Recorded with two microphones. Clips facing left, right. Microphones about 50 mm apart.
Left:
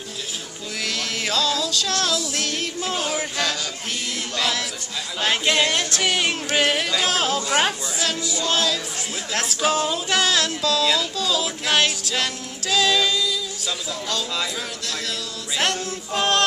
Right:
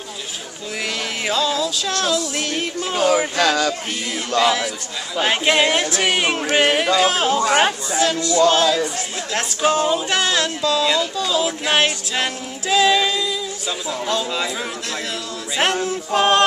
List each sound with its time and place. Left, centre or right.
0.8 s music: centre
3.3 s a sound: right
4.4 s speech: centre
8.5 s speech: centre
11.2 s music: centre
15.5 s speech: centre